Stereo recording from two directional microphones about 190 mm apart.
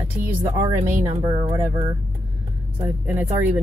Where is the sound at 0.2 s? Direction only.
15° right (ahead or behind).